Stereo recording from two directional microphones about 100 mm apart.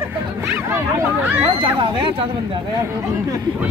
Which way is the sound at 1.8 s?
60° right (ahead or behind).